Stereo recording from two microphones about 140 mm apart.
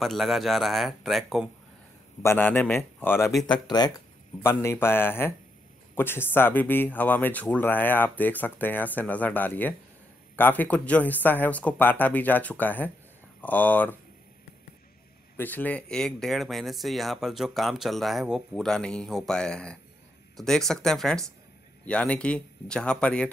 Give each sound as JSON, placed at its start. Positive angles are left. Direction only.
{"t": 0.0, "sound": "speech", "side_deg": 0}
{"t": 2.2, "sound": "speech", "side_deg": 15}
{"t": 3.6, "sound": "speech", "side_deg": 30}
{"t": 4.4, "sound": "speech", "side_deg": 20}
{"t": 15.3, "sound": "speech", "side_deg": 15}